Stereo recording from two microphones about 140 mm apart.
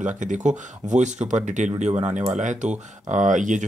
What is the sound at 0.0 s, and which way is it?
Speech, 65° right (ahead or behind).